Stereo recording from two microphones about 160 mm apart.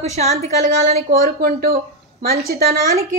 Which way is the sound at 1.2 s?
70° right (ahead or behind).